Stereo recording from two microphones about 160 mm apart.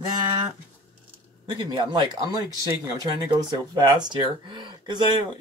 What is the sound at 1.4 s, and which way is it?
Speech, 30° right (ahead or behind).